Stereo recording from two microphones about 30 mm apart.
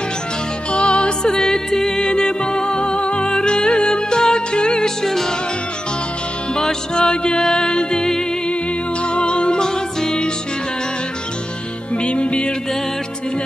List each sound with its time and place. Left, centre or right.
0.7 s music: left
3.3 s music: left
4.8 s music: centre
6.5 s music: left
9.0 s music: left
9.6 s music: left
11.9 s music: left